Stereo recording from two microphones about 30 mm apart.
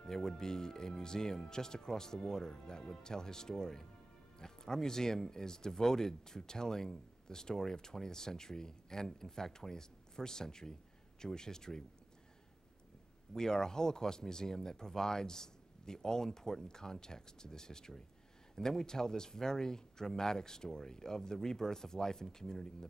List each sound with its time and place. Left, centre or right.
0.0 s speech: centre
13.3 s speech: centre